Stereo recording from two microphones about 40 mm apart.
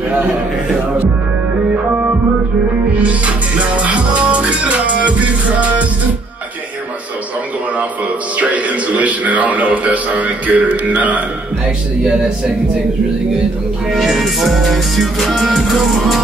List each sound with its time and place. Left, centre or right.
3.0 s music: right
8.4 s speech: right
13.9 s music: centre